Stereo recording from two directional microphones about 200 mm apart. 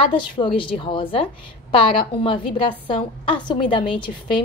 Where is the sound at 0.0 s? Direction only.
25° left (ahead or behind).